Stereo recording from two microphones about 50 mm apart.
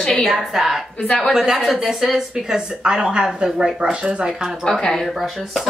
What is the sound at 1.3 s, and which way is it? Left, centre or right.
Speech, centre.